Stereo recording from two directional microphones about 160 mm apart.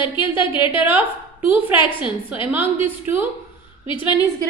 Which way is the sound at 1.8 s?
30° left (ahead or behind).